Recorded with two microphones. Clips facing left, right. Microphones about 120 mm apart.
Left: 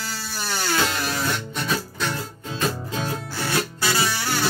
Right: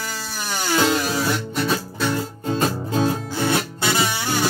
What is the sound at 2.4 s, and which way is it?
Music, 40° right (ahead or behind).